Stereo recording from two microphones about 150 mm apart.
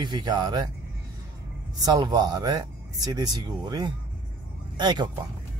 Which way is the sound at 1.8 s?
25° right (ahead or behind).